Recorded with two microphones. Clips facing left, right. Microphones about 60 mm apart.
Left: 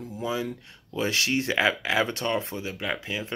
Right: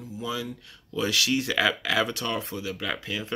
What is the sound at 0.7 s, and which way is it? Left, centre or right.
Speech, left.